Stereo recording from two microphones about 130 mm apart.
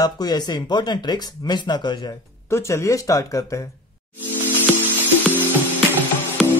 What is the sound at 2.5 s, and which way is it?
Speech, 20° left (ahead or behind).